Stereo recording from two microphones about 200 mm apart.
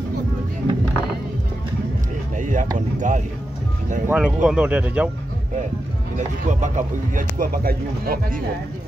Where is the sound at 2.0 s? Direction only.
40° right (ahead or behind).